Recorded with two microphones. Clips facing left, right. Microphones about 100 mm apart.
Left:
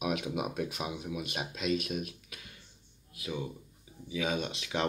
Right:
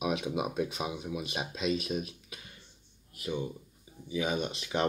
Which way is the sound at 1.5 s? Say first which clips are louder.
Right 1 dB; 35° right (ahead or behind).